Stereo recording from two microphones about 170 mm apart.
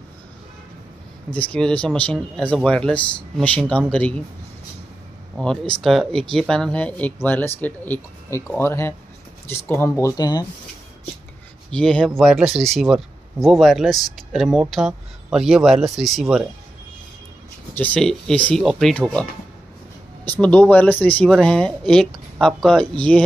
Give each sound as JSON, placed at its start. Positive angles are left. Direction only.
{"t": 1.3, "sound": "speech", "side_deg": 5}
{"t": 5.4, "sound": "speech", "side_deg": 5}
{"t": 11.7, "sound": "speech", "side_deg": 5}
{"t": 17.7, "sound": "speech", "side_deg": 10}
{"t": 20.2, "sound": "speech", "side_deg": 5}